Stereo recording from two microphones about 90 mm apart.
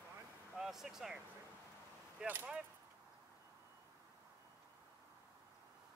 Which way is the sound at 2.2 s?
15° right (ahead or behind).